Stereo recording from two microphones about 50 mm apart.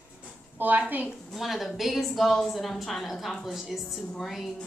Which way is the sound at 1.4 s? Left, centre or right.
Centre.